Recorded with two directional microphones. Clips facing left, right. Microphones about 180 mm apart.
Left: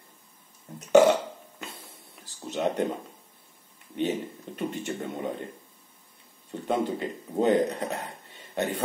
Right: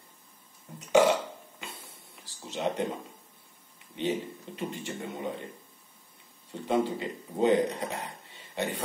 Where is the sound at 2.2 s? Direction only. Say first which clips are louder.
Left 3 dB; 50° left (ahead or behind).